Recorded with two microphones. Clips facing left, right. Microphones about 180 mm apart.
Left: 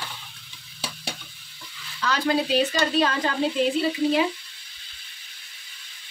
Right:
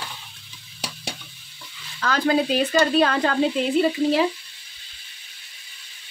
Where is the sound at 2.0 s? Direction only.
50° right (ahead or behind).